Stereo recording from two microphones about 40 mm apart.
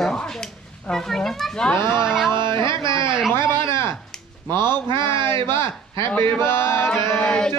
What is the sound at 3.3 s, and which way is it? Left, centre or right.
Speech, left.